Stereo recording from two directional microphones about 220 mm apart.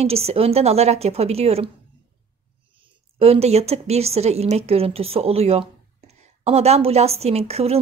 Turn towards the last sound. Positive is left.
turn(degrees=-30)  # may be behind; listen again after turning